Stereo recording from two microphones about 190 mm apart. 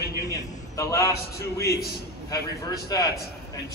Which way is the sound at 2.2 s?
20° left (ahead or behind).